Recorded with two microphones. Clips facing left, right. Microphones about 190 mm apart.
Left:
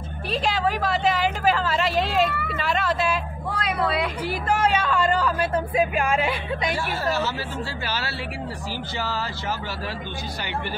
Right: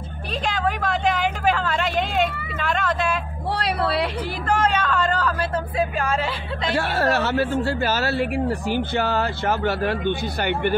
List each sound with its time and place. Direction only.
0.5 s vehicle: 5° left (ahead or behind)
3.5 s a woman's voice: 35° right (ahead or behind)
4.5 s a sound: 10° left (ahead or behind)
6.7 s speech: 65° right (ahead or behind)